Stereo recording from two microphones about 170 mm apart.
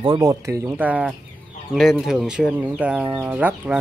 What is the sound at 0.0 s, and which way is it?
Speech, 20° right (ahead or behind).